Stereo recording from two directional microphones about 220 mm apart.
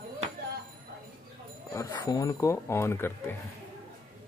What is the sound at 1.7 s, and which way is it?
Speech, 20° left (ahead or behind).